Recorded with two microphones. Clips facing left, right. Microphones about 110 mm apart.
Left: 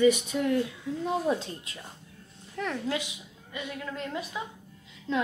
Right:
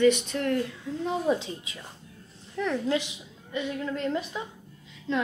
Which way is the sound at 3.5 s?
10° left (ahead or behind).